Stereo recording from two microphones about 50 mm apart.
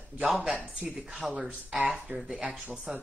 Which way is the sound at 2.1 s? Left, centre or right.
Centre.